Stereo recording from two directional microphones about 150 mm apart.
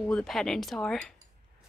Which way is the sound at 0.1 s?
5° left (ahead or behind).